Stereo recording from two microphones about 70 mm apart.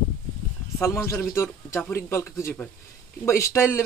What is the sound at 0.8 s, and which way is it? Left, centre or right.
Speech, left.